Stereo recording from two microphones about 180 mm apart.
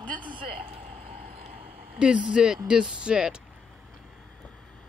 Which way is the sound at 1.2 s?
50° right (ahead or behind).